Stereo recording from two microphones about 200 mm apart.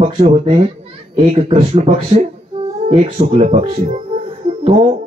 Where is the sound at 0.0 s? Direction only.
30° right (ahead or behind).